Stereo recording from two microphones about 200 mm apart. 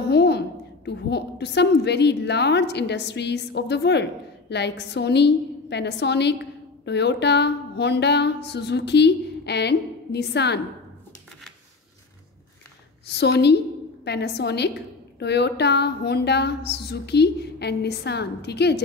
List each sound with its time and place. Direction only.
0.1 s a sound: 55° left (ahead or behind)
0.8 s a woman's voice: 55° left (ahead or behind)
13.1 s a woman's voice: 55° left (ahead or behind)